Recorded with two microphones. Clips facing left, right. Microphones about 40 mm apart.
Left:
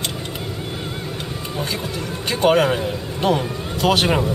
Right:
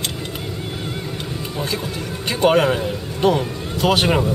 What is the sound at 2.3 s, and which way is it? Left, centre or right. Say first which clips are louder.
A man's voice: even; centre.